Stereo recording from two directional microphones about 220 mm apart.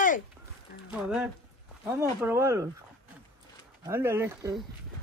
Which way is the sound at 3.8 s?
10° right (ahead or behind).